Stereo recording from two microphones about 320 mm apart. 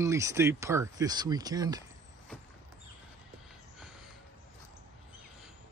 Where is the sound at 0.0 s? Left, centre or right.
Centre.